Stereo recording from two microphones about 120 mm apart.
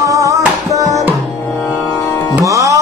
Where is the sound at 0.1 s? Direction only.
25° right (ahead or behind).